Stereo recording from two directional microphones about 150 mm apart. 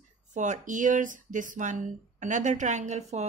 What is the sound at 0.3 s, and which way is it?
Speech, 55° right (ahead or behind).